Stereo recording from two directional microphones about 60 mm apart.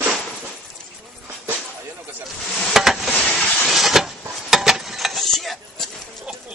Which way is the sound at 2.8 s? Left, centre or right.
Centre.